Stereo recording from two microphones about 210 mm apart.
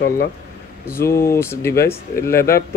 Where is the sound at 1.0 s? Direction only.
50° left (ahead or behind).